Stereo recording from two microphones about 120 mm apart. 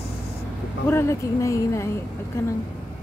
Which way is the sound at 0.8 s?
20° left (ahead or behind).